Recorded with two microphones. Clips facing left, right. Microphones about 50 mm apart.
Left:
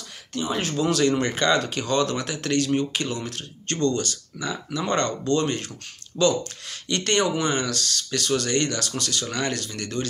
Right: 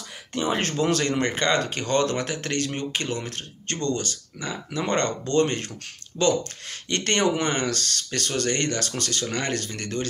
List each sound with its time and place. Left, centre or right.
0.3 s speech: right
0.6 s speech: right
0.8 s speech: right
6.9 s speech: right